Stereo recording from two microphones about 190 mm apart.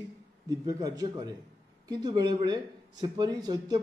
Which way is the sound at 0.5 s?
20° right (ahead or behind).